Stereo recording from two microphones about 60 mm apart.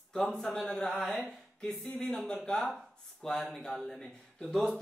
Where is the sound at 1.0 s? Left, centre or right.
Centre.